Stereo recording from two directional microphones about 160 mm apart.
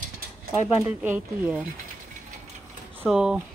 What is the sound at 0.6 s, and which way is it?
Speech, 15° right (ahead or behind).